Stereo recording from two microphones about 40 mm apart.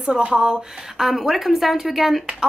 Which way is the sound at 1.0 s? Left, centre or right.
Centre.